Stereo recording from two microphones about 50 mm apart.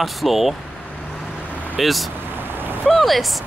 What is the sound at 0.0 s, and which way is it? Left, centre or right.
Speech, centre.